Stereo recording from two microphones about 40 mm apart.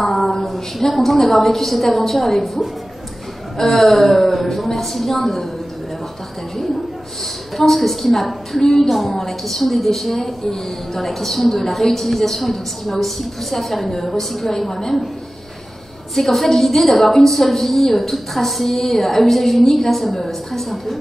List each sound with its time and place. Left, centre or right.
0.0 s a woman's voice: centre
7.5 s a woman's voice: centre
16.2 s a woman's voice: centre